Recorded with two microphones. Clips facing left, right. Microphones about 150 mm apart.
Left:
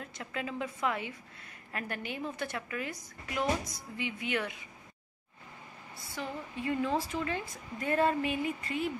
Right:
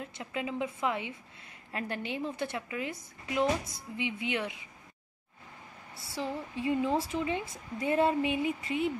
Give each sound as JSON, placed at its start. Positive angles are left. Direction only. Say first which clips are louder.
{"t": 0.0, "sound": "a woman's voice", "louder": "right 2 dB", "side_deg": -20}
{"t": 6.0, "sound": "a woman's voice", "louder": "right 4 dB", "side_deg": -30}
{"t": 6.6, "sound": "a woman's voice", "louder": "right 2 dB", "side_deg": -15}